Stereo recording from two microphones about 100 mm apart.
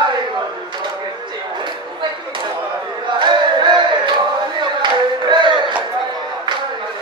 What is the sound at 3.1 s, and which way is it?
Battle cry, 50° right (ahead or behind).